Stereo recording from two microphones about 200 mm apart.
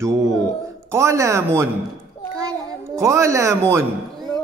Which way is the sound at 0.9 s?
15° right (ahead or behind).